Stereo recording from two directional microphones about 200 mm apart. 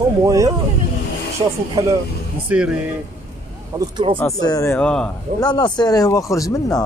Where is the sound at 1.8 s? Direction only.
15° right (ahead or behind).